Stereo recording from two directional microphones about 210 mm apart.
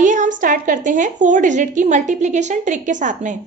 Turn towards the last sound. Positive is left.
turn(degrees=-35)  # may be behind; listen again after turning